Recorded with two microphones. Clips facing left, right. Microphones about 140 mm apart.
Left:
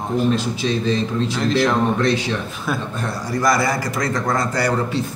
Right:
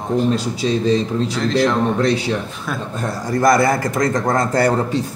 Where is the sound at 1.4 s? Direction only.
5° left (ahead or behind).